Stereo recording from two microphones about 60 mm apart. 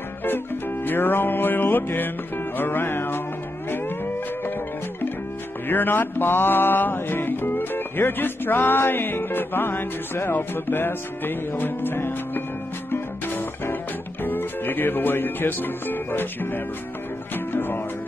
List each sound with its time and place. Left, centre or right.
0.8 s music: left
5.7 s music: left